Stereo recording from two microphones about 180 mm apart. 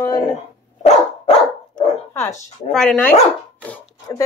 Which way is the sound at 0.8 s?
40° left (ahead or behind).